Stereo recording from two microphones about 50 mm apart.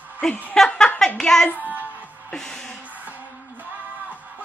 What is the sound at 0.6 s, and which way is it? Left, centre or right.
Speech, centre.